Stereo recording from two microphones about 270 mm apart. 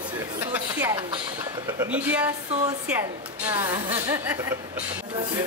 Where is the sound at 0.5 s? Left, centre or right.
Centre.